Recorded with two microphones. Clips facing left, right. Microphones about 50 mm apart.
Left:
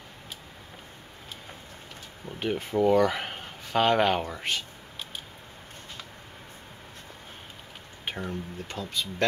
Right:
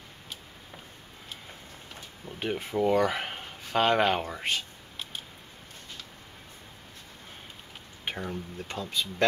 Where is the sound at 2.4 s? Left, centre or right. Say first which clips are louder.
Left 3 dB; centre.